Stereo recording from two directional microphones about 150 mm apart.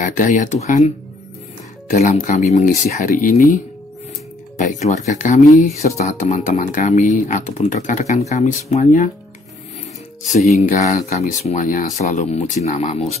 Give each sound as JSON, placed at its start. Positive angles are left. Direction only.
{"t": 0.0, "sound": "speech", "side_deg": 60}
{"t": 2.0, "sound": "speech", "side_deg": 50}
{"t": 4.6, "sound": "speech", "side_deg": 55}
{"t": 10.7, "sound": "speech", "side_deg": 60}